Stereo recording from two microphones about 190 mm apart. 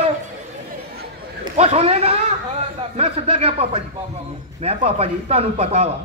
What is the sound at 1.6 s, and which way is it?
A man's voice, 35° right (ahead or behind).